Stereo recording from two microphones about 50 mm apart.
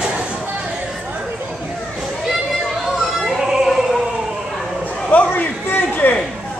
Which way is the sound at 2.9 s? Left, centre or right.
Centre.